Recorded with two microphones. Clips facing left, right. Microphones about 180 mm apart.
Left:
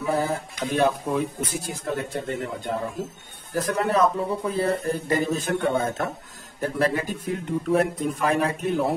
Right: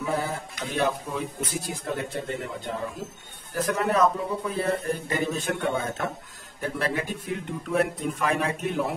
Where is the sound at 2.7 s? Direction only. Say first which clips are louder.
Left 5 dB; 45° left (ahead or behind).